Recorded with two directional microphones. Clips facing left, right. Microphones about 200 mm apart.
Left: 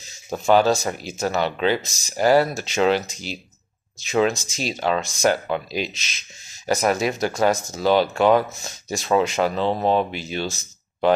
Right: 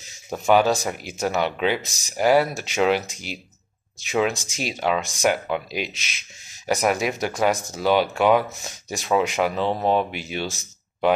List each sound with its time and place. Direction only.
0.5 s speech: 10° right (ahead or behind)
6.6 s speech: 10° right (ahead or behind)